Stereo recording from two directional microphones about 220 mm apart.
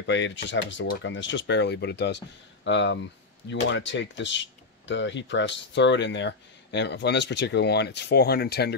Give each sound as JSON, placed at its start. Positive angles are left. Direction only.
{"t": 0.0, "sound": "speech", "side_deg": 55}